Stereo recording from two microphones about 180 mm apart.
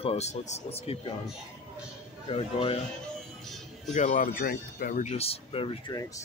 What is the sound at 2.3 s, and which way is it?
Speech, 30° left (ahead or behind).